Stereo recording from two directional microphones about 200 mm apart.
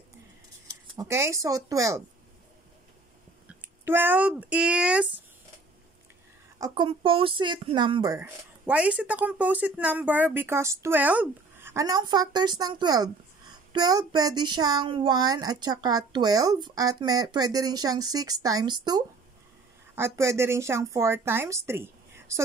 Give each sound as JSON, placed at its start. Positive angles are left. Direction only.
{"t": 0.9, "sound": "speech", "side_deg": -15}
{"t": 3.4, "sound": "speech", "side_deg": -10}
{"t": 6.6, "sound": "speech", "side_deg": -25}